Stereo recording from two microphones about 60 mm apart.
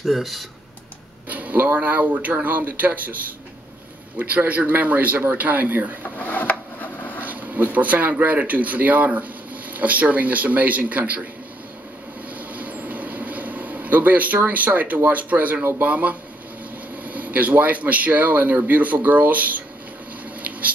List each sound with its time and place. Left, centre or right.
0.0 s speech: centre
1.3 s speech: right
4.2 s speech: right
6.1 s a sound: left
7.2 s speech: right
12.4 s a sound: right
14.5 s speech: right